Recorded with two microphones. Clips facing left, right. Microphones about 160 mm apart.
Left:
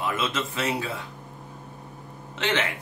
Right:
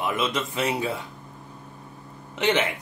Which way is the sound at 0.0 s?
15° right (ahead or behind).